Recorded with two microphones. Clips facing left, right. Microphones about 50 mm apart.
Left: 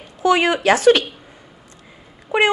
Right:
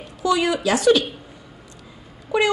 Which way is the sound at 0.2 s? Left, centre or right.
Left.